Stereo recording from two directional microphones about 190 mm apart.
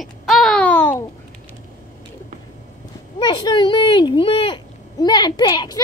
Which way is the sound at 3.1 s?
25° left (ahead or behind).